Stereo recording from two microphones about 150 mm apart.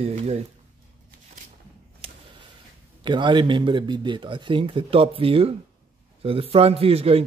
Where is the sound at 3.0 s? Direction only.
30° right (ahead or behind).